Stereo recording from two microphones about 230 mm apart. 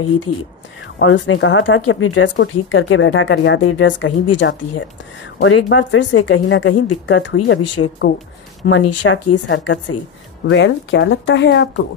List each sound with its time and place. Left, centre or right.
0.9 s speech: left
8.6 s speech: left
10.4 s speech: left